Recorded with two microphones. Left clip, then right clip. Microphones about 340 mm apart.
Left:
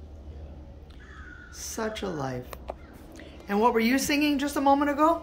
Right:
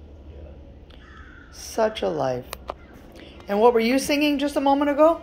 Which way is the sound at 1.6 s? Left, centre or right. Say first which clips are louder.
Right 9 dB; centre.